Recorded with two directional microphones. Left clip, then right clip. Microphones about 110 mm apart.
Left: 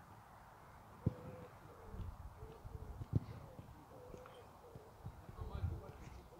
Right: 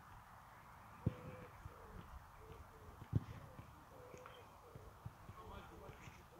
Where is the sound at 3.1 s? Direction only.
10° left (ahead or behind).